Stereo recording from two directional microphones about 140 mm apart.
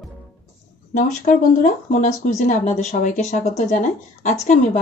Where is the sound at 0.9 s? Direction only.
65° left (ahead or behind).